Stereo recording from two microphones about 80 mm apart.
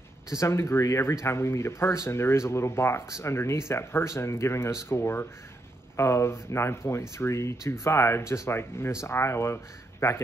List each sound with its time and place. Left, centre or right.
0.3 s speech: left